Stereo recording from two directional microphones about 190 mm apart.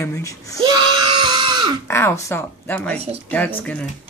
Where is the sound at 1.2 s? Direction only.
25° right (ahead or behind).